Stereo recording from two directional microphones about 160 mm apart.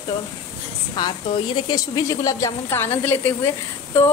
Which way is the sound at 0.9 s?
30° left (ahead or behind).